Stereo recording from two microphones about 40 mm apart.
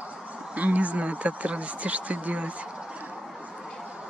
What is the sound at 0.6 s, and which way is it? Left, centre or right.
Speech, right.